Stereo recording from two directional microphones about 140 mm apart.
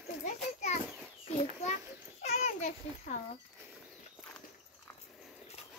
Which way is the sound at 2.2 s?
55° left (ahead or behind).